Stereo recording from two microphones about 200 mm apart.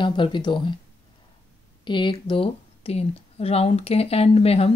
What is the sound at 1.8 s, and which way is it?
Speech, 25° left (ahead or behind).